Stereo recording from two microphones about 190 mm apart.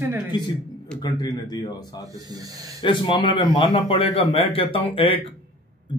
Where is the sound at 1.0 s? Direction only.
20° left (ahead or behind).